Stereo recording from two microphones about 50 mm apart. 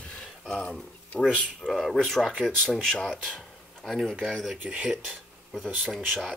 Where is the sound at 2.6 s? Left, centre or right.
Centre.